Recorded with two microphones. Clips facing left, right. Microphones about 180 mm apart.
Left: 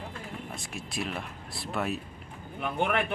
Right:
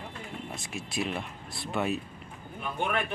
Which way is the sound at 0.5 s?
Centre (ahead or behind).